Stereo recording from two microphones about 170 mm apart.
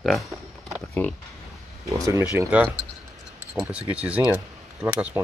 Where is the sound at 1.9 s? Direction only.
15° right (ahead or behind).